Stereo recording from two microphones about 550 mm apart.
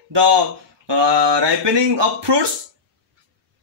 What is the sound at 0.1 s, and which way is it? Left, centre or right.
Speech, right.